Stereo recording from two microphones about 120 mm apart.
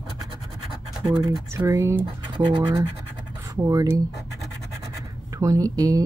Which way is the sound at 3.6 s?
30° right (ahead or behind).